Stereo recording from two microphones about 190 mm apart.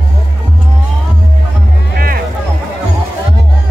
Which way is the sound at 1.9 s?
50° right (ahead or behind).